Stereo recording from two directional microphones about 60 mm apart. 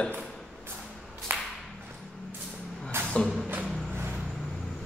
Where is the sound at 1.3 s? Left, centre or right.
Right.